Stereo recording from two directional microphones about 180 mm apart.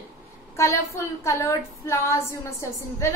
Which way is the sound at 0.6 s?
15° left (ahead or behind).